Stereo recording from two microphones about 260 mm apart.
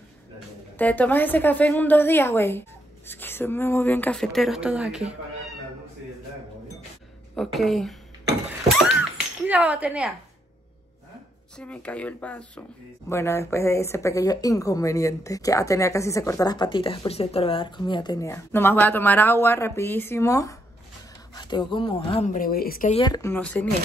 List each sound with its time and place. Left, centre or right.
0.7 s speech: centre
7.3 s speech: centre
8.5 s a sound: centre
9.5 s speech: centre
11.5 s speech: centre; by 22.9 s left
22.9 s speech: centre